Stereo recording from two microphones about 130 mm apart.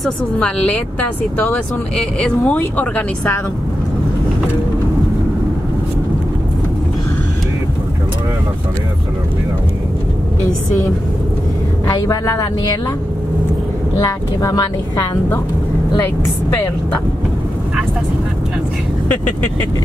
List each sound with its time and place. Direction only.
0.0 s speech: 5° left (ahead or behind)
11.9 s speech: 25° left (ahead or behind)
14.0 s speech: 25° left (ahead or behind)